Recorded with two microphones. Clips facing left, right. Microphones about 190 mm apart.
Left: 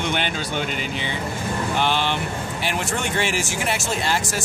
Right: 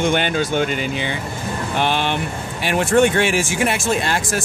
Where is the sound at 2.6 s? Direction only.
55° right (ahead or behind).